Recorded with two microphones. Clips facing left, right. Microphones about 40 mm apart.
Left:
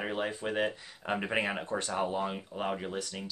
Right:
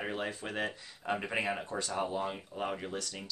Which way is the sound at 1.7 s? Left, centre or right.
Left.